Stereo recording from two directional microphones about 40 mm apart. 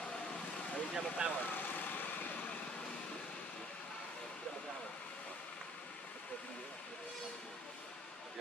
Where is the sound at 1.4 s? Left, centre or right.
Left.